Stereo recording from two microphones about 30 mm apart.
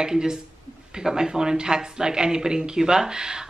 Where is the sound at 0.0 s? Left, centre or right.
Right.